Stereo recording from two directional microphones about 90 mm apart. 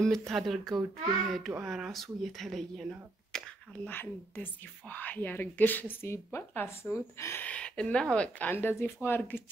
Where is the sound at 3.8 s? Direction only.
20° left (ahead or behind).